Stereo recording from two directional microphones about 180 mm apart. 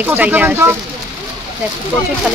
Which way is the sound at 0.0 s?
10° right (ahead or behind).